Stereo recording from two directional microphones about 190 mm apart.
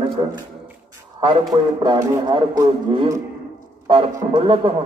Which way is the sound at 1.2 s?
20° right (ahead or behind).